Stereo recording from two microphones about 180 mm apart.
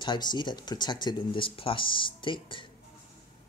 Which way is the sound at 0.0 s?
25° left (ahead or behind).